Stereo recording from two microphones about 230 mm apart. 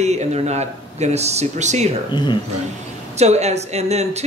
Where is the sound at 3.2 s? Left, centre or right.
Right.